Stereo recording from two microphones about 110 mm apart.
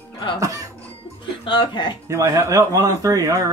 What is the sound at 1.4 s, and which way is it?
Speech, 45° left (ahead or behind).